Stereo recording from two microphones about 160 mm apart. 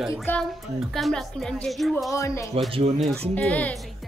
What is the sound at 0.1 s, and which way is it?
Speech, 10° left (ahead or behind).